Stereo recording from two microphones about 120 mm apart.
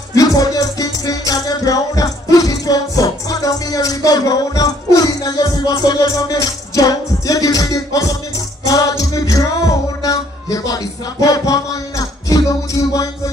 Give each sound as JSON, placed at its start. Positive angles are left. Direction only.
{"t": 0.1, "sound": "music", "side_deg": 30}